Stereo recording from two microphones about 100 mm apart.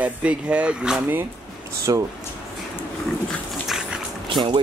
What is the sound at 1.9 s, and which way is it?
Speech, 40° right (ahead or behind).